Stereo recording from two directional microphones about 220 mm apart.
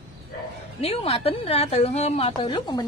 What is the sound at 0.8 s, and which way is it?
A woman's voice, 25° left (ahead or behind).